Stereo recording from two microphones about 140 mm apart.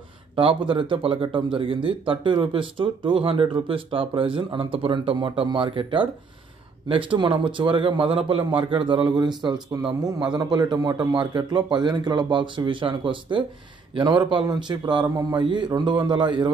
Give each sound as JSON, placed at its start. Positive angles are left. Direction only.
{"t": 0.4, "sound": "speech", "side_deg": -40}